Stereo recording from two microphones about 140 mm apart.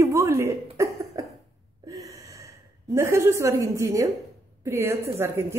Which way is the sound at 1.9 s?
25° right (ahead or behind).